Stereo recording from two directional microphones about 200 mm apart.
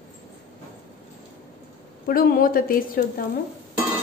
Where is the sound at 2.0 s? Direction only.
50° left (ahead or behind).